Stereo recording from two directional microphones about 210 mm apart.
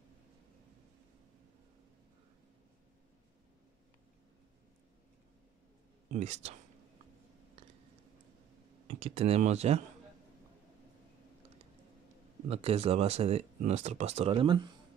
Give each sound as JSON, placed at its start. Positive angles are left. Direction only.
{"t": 6.1, "sound": "speech", "side_deg": -30}
{"t": 8.8, "sound": "speech", "side_deg": -30}
{"t": 12.4, "sound": "speech", "side_deg": -30}